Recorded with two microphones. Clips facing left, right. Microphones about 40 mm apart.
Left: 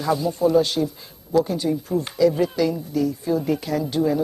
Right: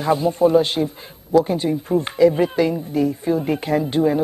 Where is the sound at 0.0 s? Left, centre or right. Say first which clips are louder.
Right 4 dB; right.